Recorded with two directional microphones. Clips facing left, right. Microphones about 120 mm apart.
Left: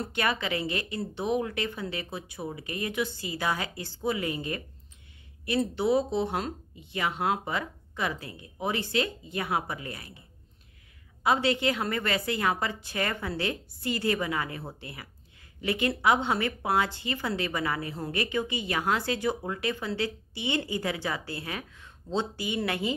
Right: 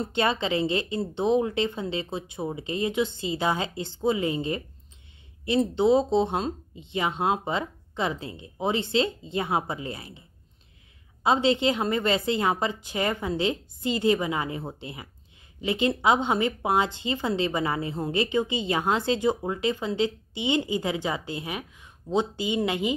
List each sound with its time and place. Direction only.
0.0 s a woman's voice: 25° right (ahead or behind)
11.2 s a woman's voice: 20° right (ahead or behind)